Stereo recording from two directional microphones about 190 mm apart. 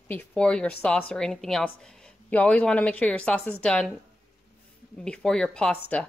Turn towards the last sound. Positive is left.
turn(degrees=5)  # may be behind; listen again after turning